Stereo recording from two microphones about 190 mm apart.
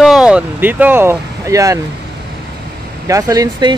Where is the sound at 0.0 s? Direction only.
5° right (ahead or behind).